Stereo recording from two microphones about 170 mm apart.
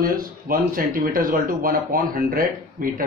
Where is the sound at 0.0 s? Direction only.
60° right (ahead or behind).